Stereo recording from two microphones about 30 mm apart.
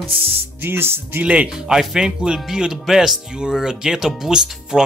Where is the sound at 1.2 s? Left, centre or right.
Right.